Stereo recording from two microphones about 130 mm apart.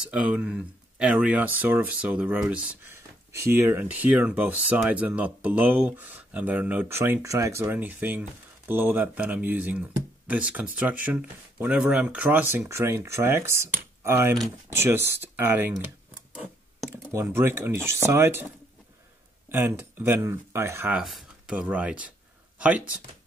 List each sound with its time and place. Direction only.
0.1 s speech: 10° right (ahead or behind)
16.9 s speech: 20° right (ahead or behind)
19.5 s speech: 15° right (ahead or behind)
20.9 s speech: centre (ahead or behind)